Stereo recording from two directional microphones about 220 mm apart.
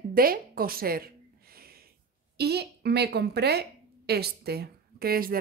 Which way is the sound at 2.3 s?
50° right (ahead or behind).